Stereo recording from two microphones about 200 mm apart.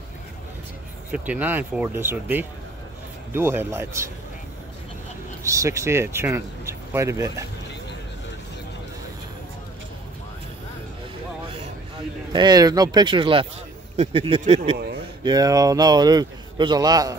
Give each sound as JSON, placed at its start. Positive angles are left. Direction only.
{"t": 1.1, "sound": "speech", "side_deg": -10}
{"t": 5.4, "sound": "speech", "side_deg": -15}
{"t": 12.3, "sound": "a man's voice", "side_deg": -20}
{"t": 15.2, "sound": "a man's voice", "side_deg": -20}